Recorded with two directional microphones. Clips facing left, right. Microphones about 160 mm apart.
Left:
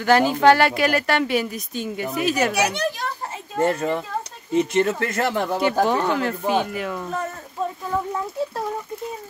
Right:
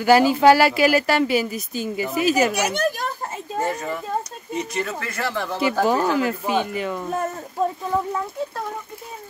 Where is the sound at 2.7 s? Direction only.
45° right (ahead or behind).